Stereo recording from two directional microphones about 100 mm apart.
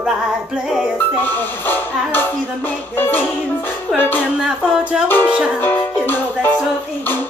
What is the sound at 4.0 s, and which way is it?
Music, 20° left (ahead or behind).